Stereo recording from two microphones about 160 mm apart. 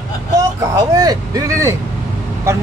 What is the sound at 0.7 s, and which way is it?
Speech, 25° right (ahead or behind).